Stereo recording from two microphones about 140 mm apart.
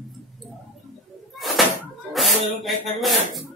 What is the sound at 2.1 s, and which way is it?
Speech, centre (ahead or behind).